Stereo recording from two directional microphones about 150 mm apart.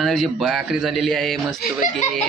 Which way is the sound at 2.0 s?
60° left (ahead or behind).